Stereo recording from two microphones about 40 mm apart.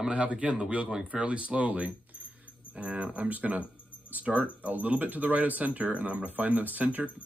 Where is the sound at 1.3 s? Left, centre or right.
Right.